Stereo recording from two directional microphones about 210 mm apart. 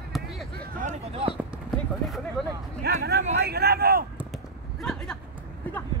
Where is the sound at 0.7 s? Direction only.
30° right (ahead or behind).